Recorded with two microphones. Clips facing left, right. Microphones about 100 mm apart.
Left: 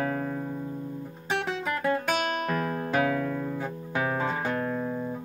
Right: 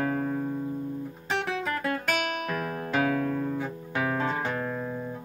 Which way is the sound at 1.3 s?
Centre (ahead or behind).